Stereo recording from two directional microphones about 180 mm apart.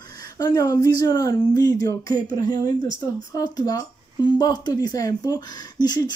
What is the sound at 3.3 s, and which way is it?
Speech, 20° left (ahead or behind).